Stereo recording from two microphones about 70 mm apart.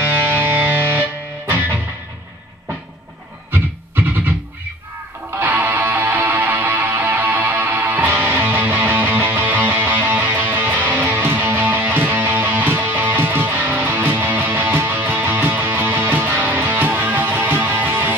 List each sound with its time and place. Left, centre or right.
0.0 s music: right
3.5 s music: right